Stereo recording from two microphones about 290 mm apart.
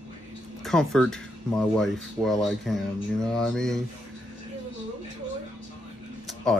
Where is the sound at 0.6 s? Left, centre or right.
Centre.